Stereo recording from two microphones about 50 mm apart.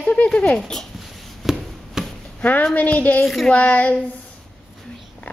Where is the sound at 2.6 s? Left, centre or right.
Left.